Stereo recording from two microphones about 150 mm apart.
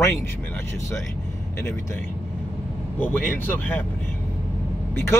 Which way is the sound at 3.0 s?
15° left (ahead or behind).